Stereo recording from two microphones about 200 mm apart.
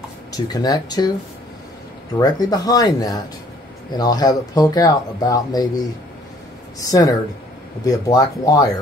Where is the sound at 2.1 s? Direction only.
20° left (ahead or behind).